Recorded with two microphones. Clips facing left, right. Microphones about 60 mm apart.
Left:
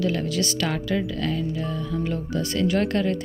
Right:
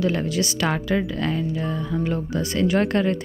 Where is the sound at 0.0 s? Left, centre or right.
Right.